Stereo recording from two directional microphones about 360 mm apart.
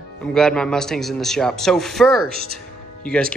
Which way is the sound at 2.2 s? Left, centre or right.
Right.